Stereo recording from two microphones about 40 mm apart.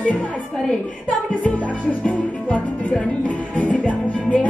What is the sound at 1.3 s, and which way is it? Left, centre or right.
Music, left.